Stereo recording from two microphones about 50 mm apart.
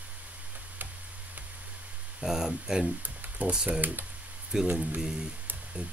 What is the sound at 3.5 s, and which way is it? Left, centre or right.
Speech, centre.